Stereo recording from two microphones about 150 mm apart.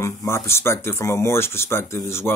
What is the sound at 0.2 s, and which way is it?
Speech, 15° left (ahead or behind).